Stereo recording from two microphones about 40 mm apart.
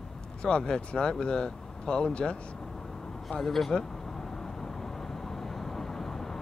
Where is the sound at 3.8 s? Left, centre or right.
Centre.